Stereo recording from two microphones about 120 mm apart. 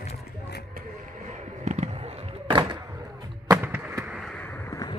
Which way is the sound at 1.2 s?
80° right.